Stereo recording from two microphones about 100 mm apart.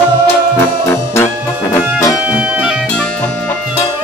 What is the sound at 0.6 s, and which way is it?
Music, 25° left (ahead or behind).